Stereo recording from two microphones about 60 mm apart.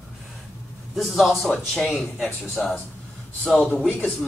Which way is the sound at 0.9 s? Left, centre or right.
Centre.